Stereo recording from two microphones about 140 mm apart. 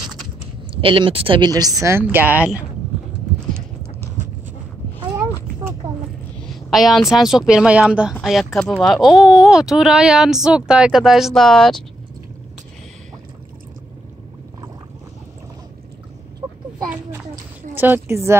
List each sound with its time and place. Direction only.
0.7 s speech: 40° right (ahead or behind)
1.5 s a woman's voice: 25° right (ahead or behind); by 2.6 s 10° right (ahead or behind)
6.4 s a woman's voice: centre (ahead or behind)
17.7 s a woman's voice: 15° right (ahead or behind)